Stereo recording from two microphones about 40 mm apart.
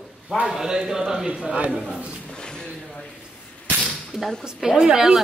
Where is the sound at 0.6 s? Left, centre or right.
Centre.